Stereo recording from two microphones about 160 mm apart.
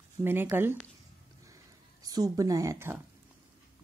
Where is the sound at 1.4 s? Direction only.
20° right (ahead or behind).